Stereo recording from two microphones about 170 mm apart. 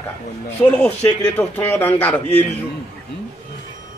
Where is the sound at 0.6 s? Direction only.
10° left (ahead or behind).